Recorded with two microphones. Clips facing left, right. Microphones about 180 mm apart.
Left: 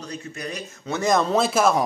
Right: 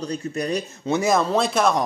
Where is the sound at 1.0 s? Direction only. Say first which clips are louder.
Left 2 dB; centre (ahead or behind).